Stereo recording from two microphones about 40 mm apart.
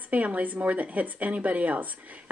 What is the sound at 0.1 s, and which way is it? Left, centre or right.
Speech, right.